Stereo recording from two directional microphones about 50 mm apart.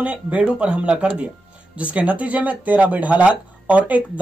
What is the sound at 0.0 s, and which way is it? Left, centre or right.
Speech, right.